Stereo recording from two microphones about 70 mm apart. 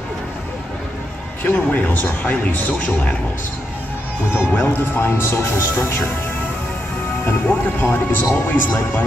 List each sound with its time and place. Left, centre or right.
1.4 s speech: left
4.3 s speech: left
7.2 s speech: left